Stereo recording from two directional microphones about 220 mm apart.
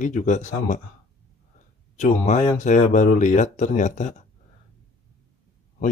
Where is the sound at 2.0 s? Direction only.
35° left (ahead or behind).